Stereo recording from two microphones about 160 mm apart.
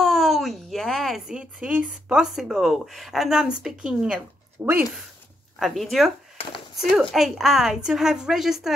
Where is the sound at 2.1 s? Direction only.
5° right (ahead or behind).